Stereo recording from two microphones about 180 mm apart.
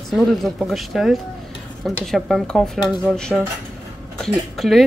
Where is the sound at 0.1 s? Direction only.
Centre (ahead or behind).